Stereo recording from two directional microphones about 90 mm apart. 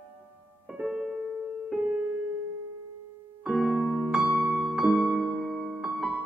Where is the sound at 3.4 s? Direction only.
5° right (ahead or behind).